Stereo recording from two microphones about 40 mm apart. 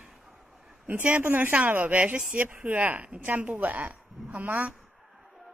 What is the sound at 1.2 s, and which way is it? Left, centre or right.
Speech, right.